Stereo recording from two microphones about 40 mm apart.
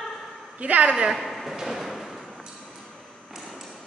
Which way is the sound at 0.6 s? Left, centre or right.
Right.